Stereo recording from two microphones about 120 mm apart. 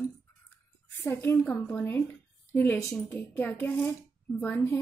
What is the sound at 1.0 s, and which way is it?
Speech, 20° left (ahead or behind).